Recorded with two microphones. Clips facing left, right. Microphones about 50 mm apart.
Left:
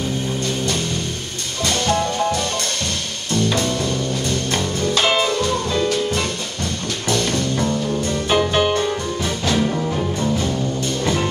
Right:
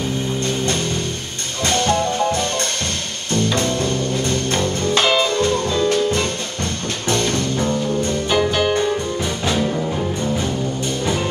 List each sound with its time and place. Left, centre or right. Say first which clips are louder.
1.6 s music: right 2 dB; right
3.5 s music: right 1 dB; right
5.0 s music: even; centre
7.1 s music: right 1 dB; right
8.4 s music: even; centre